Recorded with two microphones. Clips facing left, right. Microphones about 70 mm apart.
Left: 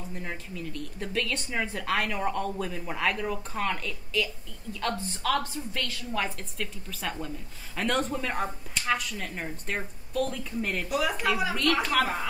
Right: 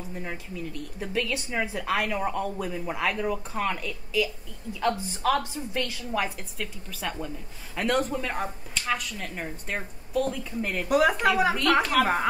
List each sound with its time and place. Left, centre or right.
0.1 s a woman's voice: centre
10.9 s speech: right
11.5 s a woman's voice: centre